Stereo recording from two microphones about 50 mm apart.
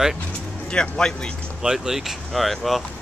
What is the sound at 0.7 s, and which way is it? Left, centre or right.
Speech, centre.